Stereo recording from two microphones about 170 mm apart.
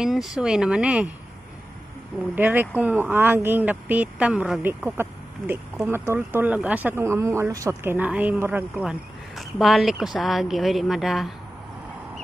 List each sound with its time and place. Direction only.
0.0 s speech: centre (ahead or behind)
2.3 s speech: 10° right (ahead or behind)